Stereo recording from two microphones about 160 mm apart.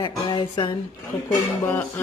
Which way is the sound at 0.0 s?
30° left (ahead or behind).